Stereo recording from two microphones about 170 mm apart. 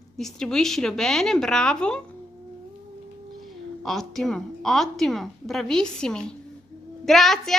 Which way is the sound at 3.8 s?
Centre (ahead or behind).